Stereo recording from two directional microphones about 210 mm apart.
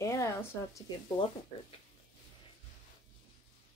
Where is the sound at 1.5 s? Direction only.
25° left (ahead or behind).